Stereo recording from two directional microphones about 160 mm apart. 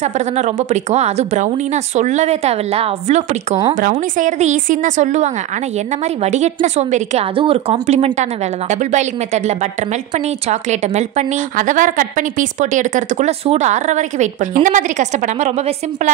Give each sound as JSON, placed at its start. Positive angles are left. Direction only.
{"t": 0.0, "sound": "a woman's voice", "side_deg": -45}